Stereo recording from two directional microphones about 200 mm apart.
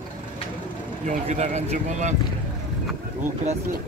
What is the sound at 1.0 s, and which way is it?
Speech, 35° right (ahead or behind).